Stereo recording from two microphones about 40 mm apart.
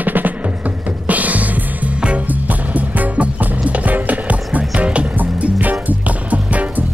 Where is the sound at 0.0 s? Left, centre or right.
Right.